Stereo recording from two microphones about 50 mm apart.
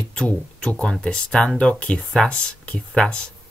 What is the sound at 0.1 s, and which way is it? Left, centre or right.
Speech, left.